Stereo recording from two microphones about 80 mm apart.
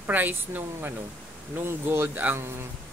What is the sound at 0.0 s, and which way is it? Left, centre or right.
Speech, right.